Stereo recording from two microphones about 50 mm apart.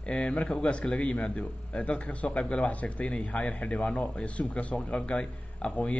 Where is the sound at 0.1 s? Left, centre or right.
Left.